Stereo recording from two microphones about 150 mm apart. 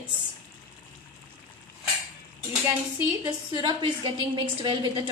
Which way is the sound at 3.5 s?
30° right (ahead or behind).